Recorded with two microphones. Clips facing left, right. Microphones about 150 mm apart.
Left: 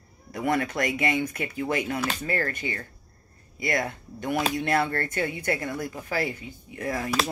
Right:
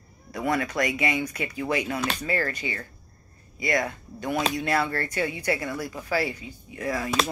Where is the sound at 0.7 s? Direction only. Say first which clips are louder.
Even; 50° left (ahead or behind).